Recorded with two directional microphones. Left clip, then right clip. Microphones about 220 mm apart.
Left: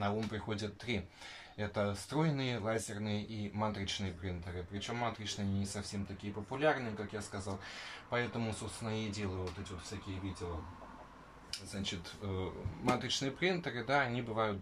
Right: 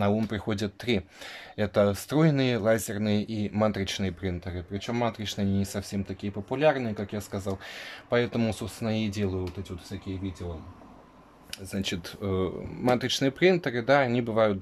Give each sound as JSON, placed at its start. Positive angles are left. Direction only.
{"t": 0.0, "sound": "speech", "side_deg": -50}
{"t": 11.7, "sound": "speech", "side_deg": -50}